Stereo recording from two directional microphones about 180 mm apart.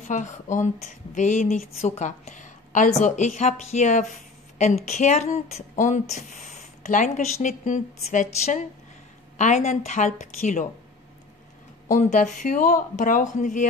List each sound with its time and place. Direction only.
0.0 s a woman's voice: 45° left (ahead or behind)
11.9 s speech: 45° left (ahead or behind)